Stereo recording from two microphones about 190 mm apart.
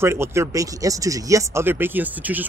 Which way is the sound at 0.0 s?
15° right (ahead or behind).